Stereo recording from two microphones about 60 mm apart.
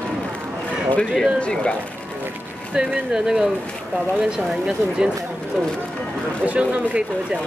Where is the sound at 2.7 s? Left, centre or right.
Centre.